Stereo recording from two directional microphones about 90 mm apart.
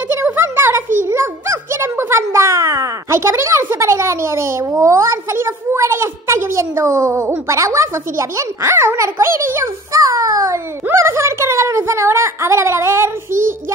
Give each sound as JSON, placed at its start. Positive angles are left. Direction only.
{"t": 0.1, "sound": "a child's voice", "side_deg": -25}